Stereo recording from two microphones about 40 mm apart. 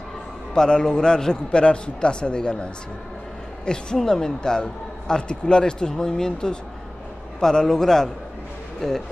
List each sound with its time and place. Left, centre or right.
0.6 s a man's voice: left